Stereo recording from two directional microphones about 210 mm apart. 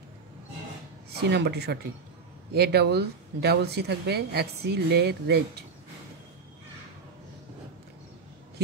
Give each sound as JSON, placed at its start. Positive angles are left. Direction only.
{"t": 1.1, "sound": "speech", "side_deg": -50}